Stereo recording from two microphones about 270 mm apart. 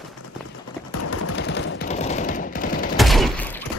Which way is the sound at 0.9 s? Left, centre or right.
Left.